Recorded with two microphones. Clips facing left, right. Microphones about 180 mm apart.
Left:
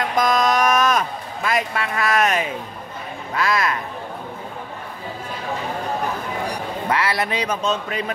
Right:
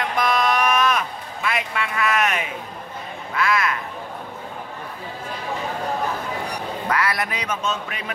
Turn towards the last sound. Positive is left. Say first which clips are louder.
# left 4 dB
turn(degrees=35)  # may be behind; listen again after turning